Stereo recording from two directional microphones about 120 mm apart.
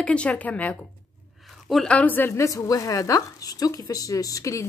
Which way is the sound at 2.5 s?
30° left (ahead or behind).